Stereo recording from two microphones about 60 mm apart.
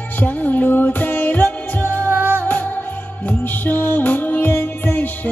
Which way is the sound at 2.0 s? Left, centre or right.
Right.